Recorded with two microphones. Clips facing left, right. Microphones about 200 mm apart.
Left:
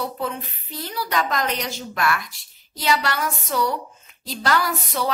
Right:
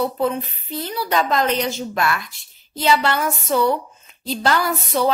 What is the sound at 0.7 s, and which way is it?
A woman's voice, 25° right (ahead or behind).